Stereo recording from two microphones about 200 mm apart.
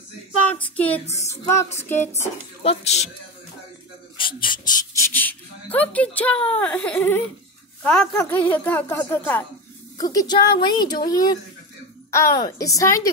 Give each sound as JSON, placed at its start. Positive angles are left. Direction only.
{"t": 0.5, "sound": "a woman's voice", "side_deg": 5}
{"t": 2.6, "sound": "speech", "side_deg": 30}
{"t": 4.2, "sound": "a woman's voice", "side_deg": 25}
{"t": 4.7, "sound": "a woman's voice", "side_deg": 15}